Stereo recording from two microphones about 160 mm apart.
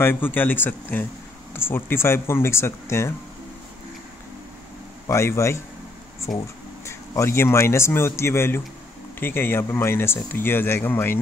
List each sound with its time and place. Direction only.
0.0 s speech: 15° left (ahead or behind)
5.0 s speech: 15° left (ahead or behind)
6.3 s speech: centre (ahead or behind)
6.9 s speech: 15° left (ahead or behind)